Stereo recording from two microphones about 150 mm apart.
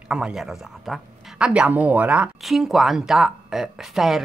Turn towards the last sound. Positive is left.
turn(degrees=0)  # may be behind; listen again after turning